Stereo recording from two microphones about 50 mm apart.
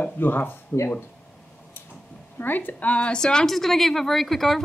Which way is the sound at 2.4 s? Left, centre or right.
Left.